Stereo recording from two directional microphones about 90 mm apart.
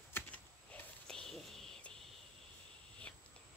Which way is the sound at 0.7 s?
10° left (ahead or behind).